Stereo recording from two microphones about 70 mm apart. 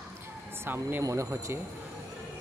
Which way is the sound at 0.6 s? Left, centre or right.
Right.